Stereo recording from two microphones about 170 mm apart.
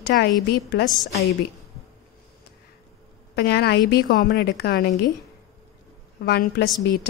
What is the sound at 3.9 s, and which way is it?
A woman's voice, 60° left (ahead or behind).